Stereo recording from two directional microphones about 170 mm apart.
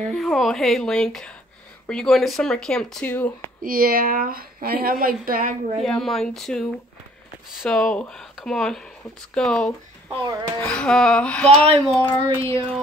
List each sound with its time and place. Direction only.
0.1 s speech: centre (ahead or behind)
3.6 s speech: 60° right (ahead or behind)
5.8 s speech: centre (ahead or behind)